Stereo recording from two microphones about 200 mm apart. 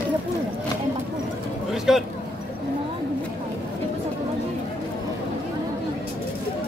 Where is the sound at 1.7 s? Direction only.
Centre (ahead or behind).